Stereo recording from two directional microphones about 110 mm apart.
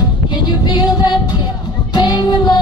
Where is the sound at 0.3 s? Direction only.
40° left (ahead or behind).